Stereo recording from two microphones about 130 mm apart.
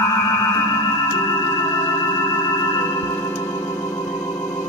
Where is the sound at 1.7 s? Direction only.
30° left (ahead or behind).